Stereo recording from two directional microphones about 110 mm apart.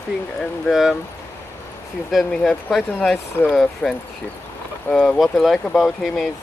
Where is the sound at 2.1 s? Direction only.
5° left (ahead or behind).